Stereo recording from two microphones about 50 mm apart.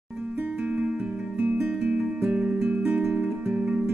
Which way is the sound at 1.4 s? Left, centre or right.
Right.